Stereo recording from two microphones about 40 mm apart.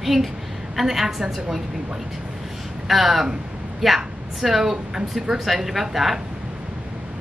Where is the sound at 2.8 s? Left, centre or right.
Centre.